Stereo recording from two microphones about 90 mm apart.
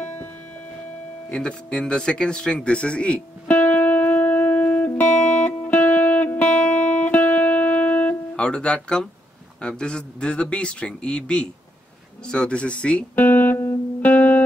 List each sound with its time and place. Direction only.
1.3 s a sound: 10° left (ahead or behind)
9.6 s a man's voice: 10° left (ahead or behind)
12.3 s music: 10° left (ahead or behind)